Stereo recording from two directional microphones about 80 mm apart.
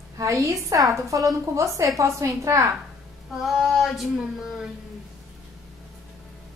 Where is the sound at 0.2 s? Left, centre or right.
Right.